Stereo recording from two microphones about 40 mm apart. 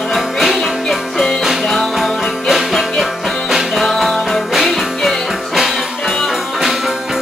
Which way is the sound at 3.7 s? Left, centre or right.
Centre.